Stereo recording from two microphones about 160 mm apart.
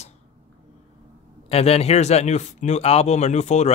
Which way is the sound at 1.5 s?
40° left (ahead or behind).